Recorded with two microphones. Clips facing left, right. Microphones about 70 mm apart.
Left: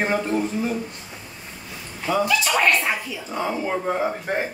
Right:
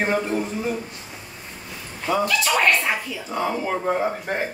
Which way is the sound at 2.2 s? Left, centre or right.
Centre.